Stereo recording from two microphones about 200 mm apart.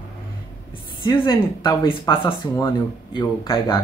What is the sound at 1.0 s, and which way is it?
Speech, 20° left (ahead or behind).